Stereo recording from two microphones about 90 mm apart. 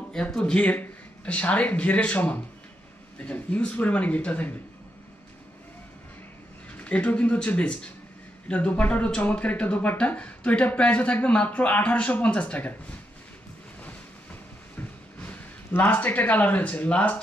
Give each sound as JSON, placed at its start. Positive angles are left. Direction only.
{"t": 0.1, "sound": "speech", "side_deg": 10}
{"t": 6.8, "sound": "speech", "side_deg": 15}
{"t": 14.8, "sound": "speech", "side_deg": 20}